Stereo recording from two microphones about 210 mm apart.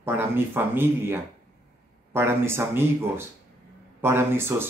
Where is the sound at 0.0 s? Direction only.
10° right (ahead or behind).